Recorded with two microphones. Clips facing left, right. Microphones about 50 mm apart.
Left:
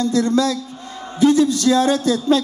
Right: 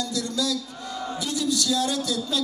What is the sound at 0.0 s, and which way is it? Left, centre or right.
A man's voice, left.